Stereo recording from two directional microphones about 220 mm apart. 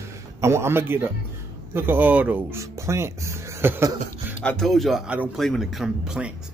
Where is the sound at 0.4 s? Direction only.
10° right (ahead or behind).